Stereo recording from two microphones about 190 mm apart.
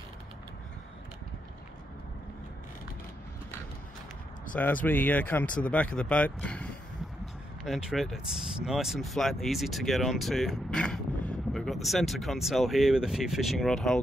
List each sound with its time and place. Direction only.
4.8 s speech: 10° left (ahead or behind)